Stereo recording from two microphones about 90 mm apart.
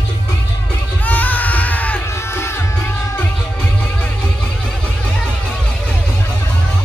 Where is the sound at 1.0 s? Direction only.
20° left (ahead or behind).